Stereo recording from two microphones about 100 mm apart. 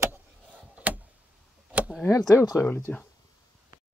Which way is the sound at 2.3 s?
30° left (ahead or behind).